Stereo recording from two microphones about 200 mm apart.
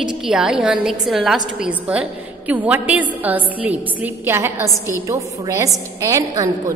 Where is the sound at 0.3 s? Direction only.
Centre (ahead or behind).